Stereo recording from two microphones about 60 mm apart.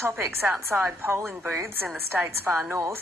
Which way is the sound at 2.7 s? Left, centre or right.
Right.